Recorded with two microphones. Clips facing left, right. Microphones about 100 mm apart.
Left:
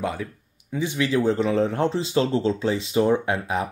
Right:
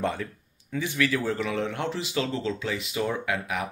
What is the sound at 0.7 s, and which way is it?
Speech, 20° left (ahead or behind).